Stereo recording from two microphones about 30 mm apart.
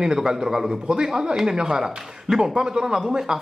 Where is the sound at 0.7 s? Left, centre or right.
Right.